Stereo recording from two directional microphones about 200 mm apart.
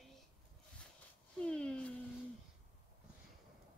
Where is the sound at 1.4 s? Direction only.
5° left (ahead or behind).